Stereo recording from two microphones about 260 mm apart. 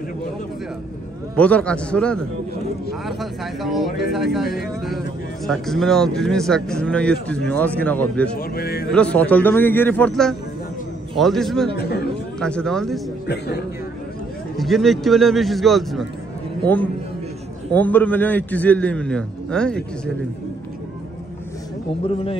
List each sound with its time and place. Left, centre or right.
1.3 s a man's voice: centre
8.4 s music: left
8.9 s a man's voice: centre
11.7 s music: left
12.4 s a man's voice: centre
14.6 s a man's voice: centre
17.7 s a man's voice: centre